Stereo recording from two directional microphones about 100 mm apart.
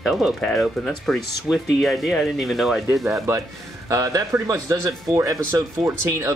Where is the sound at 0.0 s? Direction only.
Centre (ahead or behind).